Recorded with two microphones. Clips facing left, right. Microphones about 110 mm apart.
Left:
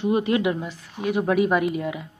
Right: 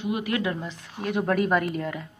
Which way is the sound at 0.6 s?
5° left (ahead or behind).